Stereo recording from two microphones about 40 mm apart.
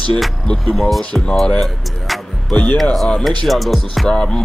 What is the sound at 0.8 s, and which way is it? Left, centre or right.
Speech, centre.